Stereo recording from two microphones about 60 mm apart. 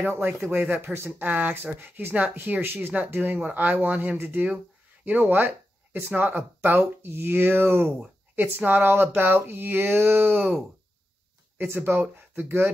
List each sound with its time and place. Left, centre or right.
0.0 s speech: right
11.5 s speech: right